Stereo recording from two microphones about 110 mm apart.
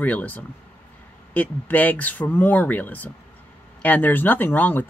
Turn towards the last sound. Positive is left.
turn(degrees=15)  # may be behind; listen again after turning